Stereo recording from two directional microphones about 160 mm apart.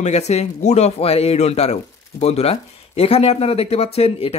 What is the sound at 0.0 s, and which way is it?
Speech, 45° left (ahead or behind).